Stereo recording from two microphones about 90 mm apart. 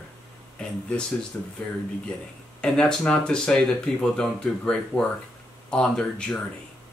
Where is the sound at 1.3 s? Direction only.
20° left (ahead or behind).